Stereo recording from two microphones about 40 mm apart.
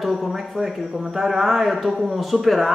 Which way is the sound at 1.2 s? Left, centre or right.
Centre.